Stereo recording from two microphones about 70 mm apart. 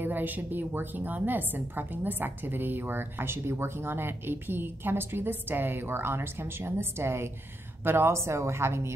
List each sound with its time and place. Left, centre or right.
0.0 s a woman's voice: right